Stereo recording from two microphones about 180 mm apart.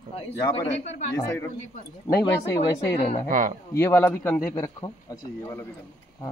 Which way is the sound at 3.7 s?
10° left (ahead or behind).